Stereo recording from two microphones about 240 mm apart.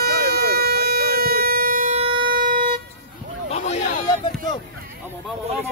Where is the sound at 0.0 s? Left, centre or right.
Right.